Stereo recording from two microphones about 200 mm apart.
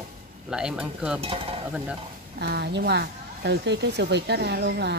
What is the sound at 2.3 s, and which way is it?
A woman's voice, 55° right (ahead or behind).